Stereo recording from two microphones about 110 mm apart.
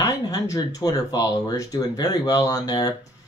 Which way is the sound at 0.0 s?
35° left (ahead or behind).